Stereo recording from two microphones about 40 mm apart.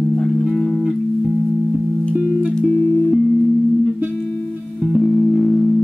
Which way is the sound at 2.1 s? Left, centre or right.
Right.